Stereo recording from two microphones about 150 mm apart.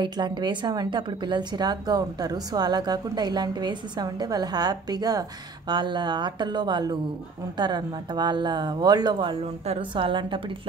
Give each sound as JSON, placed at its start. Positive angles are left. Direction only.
{"t": 0.0, "sound": "a woman's voice", "side_deg": -30}